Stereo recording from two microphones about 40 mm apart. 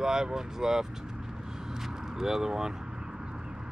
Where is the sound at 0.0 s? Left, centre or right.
Centre.